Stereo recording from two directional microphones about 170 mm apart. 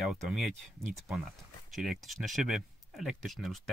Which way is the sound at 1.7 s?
Centre (ahead or behind).